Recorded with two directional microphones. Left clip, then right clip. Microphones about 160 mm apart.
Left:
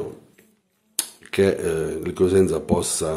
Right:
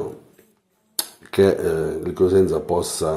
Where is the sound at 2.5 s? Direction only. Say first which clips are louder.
Right 2 dB; 15° left (ahead or behind).